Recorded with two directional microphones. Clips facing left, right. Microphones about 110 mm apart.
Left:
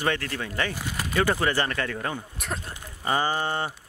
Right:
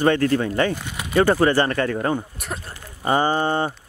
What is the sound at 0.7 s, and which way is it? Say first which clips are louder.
Speech: even; centre (ahead or behind).